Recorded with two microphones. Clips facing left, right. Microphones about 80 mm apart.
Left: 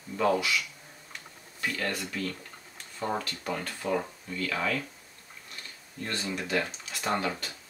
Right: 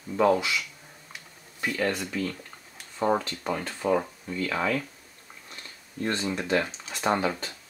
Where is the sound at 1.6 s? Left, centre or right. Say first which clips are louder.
Right 4 dB; centre.